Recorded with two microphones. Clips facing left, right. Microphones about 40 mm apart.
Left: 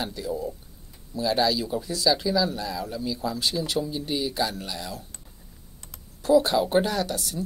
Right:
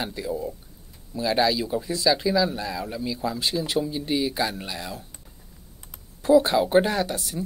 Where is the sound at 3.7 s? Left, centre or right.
Centre.